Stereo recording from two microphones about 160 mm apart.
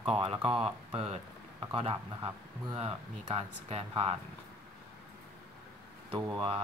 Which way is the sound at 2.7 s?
40° right (ahead or behind).